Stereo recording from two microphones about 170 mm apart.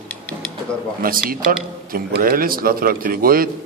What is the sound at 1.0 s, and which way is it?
A man's voice, 55° right (ahead or behind).